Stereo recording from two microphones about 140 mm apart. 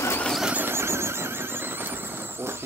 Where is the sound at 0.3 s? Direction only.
5° right (ahead or behind).